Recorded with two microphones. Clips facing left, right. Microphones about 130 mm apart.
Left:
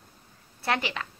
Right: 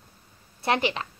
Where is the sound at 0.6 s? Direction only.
20° right (ahead or behind).